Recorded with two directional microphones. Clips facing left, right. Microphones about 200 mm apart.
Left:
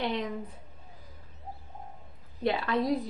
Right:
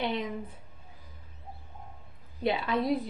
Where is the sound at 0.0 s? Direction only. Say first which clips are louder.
Even; 5° right (ahead or behind).